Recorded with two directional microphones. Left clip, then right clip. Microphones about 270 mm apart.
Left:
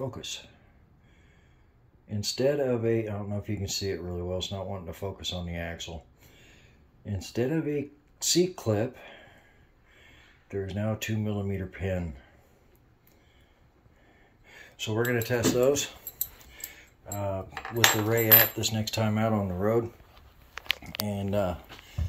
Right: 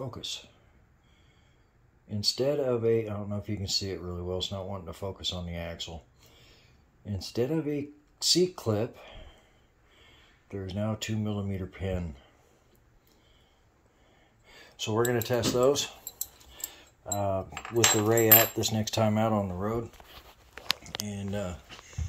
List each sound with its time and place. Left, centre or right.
0.0 s speech: centre
2.0 s speech: centre
6.3 s a sound: centre
7.1 s speech: centre
14.4 s speech: centre
21.1 s speech: centre